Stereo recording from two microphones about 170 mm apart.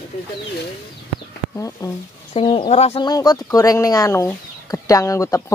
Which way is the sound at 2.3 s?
30° left (ahead or behind).